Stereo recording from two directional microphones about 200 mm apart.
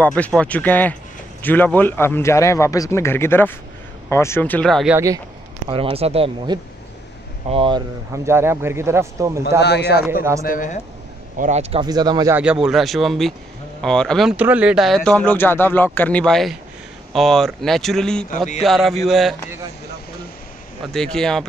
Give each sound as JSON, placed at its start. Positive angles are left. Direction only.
{"t": 0.0, "sound": "a man's voice", "side_deg": 5}
{"t": 4.9, "sound": "a man's voice", "side_deg": -15}
{"t": 5.7, "sound": "speech", "side_deg": -25}
{"t": 8.3, "sound": "a man's voice", "side_deg": -10}
{"t": 9.6, "sound": "a man's voice", "side_deg": 55}
{"t": 10.4, "sound": "speech", "side_deg": 40}
{"t": 11.3, "sound": "speech", "side_deg": -35}
{"t": 11.8, "sound": "speech", "side_deg": -20}
{"t": 12.6, "sound": "speech", "side_deg": 0}
{"t": 20.9, "sound": "speech", "side_deg": 5}